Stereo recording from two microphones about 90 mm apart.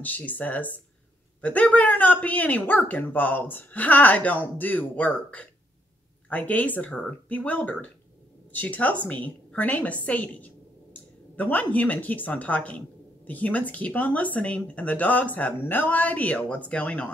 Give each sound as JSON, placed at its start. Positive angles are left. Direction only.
{"t": 0.0, "sound": "speech", "side_deg": 20}
{"t": 6.2, "sound": "a woman's voice", "side_deg": 15}